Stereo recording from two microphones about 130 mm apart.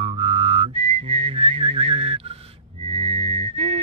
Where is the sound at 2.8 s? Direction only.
45° right (ahead or behind).